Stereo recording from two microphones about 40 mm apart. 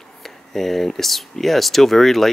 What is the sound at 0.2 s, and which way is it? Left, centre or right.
Speech, centre.